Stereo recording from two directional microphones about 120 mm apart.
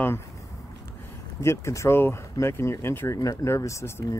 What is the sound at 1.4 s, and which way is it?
Speech, 25° left (ahead or behind).